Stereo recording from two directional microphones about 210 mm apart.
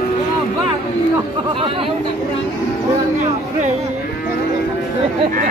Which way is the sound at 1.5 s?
25° right (ahead or behind).